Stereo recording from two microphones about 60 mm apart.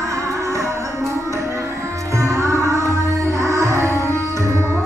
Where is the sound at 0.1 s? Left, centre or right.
Right.